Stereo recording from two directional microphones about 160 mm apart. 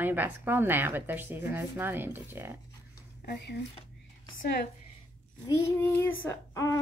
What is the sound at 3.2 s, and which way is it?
Speech, 90° left.